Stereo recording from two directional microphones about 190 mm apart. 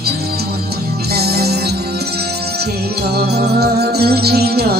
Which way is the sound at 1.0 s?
55° right (ahead or behind).